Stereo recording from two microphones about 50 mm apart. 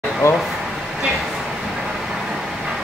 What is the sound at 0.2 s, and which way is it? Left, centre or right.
Speech, left.